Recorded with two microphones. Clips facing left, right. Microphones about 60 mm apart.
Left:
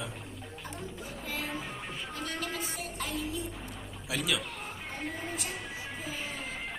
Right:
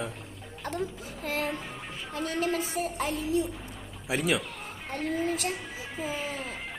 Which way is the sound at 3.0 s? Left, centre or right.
Right.